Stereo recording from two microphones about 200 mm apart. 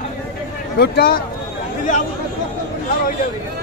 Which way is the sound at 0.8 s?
50° left (ahead or behind).